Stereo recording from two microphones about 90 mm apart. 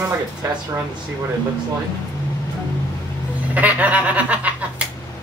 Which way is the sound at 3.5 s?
15° right (ahead or behind).